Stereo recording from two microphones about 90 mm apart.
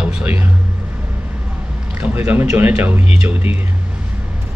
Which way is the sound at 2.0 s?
20° right (ahead or behind).